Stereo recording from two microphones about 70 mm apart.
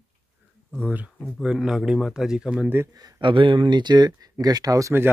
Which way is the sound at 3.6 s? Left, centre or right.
Right.